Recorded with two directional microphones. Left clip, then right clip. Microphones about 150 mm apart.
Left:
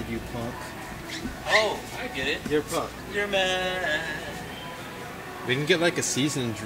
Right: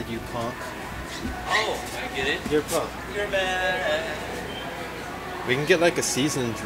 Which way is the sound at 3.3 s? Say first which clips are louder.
Even; 20° left (ahead or behind).